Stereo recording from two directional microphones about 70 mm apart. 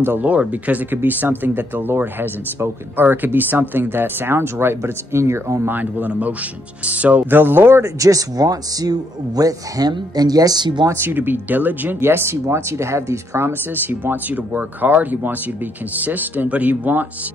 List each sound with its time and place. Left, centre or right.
0.0 s speech: right
5.7 s speech: right
8.0 s a man's voice: right
11.0 s speech: right
13.5 s speech: right